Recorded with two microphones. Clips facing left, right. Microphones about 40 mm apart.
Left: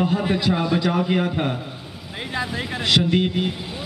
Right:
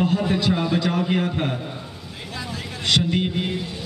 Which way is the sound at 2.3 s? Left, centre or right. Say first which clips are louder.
Left 6 dB; left.